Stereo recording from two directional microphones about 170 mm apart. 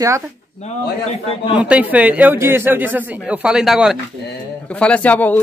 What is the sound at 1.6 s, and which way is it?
Speech, 10° right (ahead or behind).